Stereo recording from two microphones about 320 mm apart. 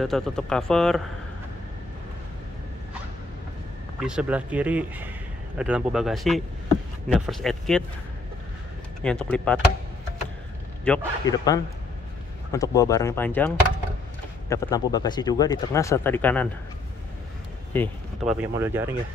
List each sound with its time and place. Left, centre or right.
0.0 s speech: centre
4.0 s speech: centre
9.0 s speech: centre
10.9 s speech: centre
14.5 s speech: centre
17.7 s speech: centre